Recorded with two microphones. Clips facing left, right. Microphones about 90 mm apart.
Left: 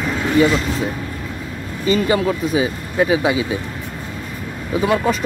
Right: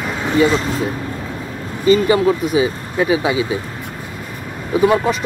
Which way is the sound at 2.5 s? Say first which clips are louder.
Right 2 dB; 30° left (ahead or behind).